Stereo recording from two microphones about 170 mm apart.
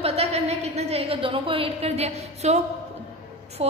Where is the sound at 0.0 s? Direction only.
35° right (ahead or behind).